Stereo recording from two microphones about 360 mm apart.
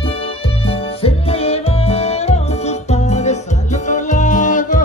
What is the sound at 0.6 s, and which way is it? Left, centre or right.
Music, centre.